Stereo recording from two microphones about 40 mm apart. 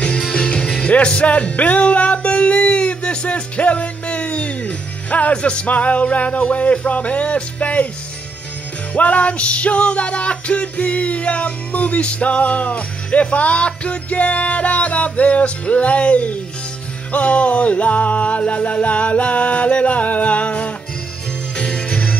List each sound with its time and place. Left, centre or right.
0.3 s music: left
5.7 s music: left
8.9 s music: left
21.5 s jingle bell: left